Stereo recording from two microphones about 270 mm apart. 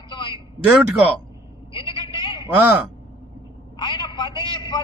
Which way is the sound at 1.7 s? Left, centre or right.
Centre.